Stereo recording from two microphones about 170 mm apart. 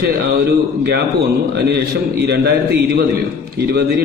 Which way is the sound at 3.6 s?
65° right (ahead or behind).